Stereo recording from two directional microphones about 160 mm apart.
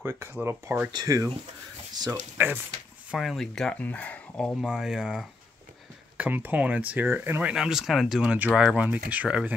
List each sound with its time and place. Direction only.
0.0 s speech: 15° right (ahead or behind)
2.3 s speech: 10° right (ahead or behind)
3.1 s speech: centre (ahead or behind)
4.6 s speech: 5° right (ahead or behind)